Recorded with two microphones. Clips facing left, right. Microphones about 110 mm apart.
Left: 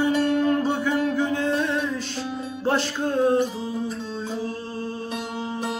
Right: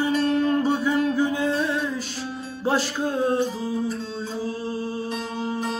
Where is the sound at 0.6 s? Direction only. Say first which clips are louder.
Right 1 dB; 10° right (ahead or behind).